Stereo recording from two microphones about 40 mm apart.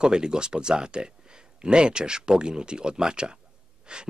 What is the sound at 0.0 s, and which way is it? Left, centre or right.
Speech, right.